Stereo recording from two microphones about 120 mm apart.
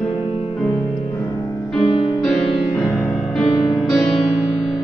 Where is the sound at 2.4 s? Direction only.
45° left (ahead or behind).